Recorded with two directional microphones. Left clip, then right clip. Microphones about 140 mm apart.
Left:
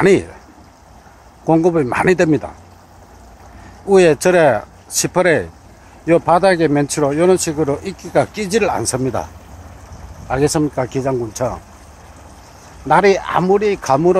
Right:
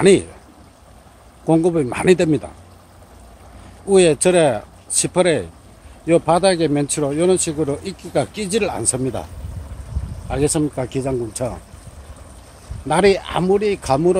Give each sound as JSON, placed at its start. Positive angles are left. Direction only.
{"t": 0.0, "sound": "speech", "side_deg": -15}
{"t": 1.5, "sound": "speech", "side_deg": -15}
{"t": 3.9, "sound": "speech", "side_deg": -15}
{"t": 12.8, "sound": "speech", "side_deg": -15}